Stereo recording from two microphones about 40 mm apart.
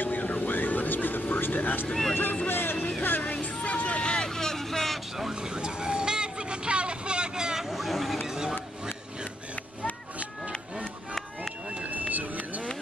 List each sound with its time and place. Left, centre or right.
0.0 s vehicle: left
2.5 s music: left
3.3 s vehicle: left
4.3 s vehicle: centre
5.3 s vehicle: right; by 8.2 s centre
8.3 s a sound: centre
11.7 s run: right